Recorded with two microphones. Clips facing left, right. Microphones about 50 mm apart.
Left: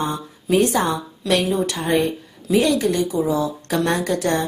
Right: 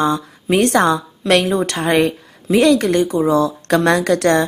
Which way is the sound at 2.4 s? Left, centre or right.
Right.